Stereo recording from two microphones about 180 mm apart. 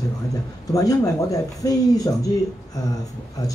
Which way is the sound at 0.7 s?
20° left (ahead or behind).